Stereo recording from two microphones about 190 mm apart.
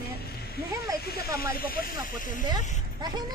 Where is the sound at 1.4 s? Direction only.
50° left (ahead or behind).